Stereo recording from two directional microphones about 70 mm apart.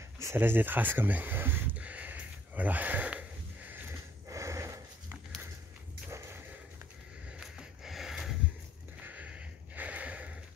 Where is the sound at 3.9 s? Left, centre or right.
Right.